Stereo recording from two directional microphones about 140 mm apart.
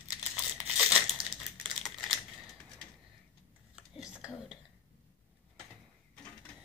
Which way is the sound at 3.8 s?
5° right (ahead or behind).